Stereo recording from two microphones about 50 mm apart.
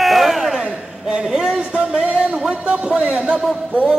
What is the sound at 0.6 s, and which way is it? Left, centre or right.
Speech, centre.